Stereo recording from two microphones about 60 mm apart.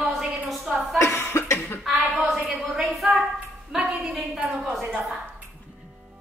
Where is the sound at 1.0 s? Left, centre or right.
Left.